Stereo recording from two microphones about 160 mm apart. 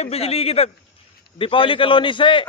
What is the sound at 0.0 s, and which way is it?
A man's voice, 40° left (ahead or behind).